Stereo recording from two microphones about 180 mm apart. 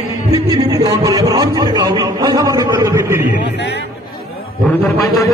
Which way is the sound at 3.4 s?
75° left (ahead or behind).